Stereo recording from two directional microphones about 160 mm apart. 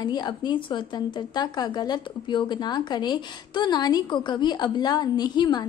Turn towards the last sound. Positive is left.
turn(degrees=25)  # may be behind; listen again after turning